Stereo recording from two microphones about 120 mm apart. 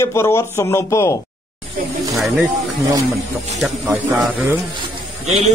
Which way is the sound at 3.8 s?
15° right (ahead or behind).